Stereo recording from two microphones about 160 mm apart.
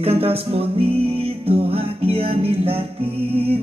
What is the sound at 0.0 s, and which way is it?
Music, 35° right (ahead or behind).